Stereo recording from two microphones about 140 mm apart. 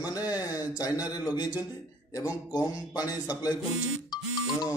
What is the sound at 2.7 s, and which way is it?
Speech, 25° left (ahead or behind).